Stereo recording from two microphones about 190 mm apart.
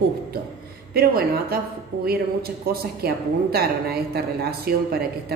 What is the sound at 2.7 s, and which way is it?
A woman's voice, 55° right (ahead or behind).